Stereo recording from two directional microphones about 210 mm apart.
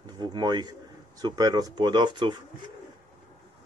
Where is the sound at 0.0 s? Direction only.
20° right (ahead or behind).